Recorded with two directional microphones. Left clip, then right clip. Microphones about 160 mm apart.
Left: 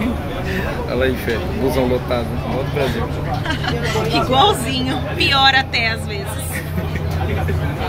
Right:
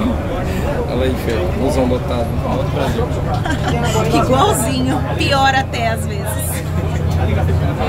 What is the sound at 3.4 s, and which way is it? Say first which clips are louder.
A woman's voice: right 2 dB; 25° right (ahead or behind).